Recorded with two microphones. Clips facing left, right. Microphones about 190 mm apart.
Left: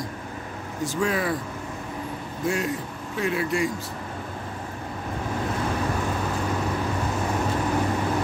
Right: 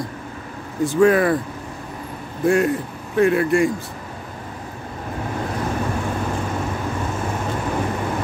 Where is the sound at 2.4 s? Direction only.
55° right (ahead or behind).